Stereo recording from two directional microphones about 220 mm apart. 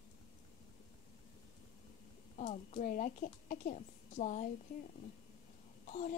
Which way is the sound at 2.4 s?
35° left (ahead or behind).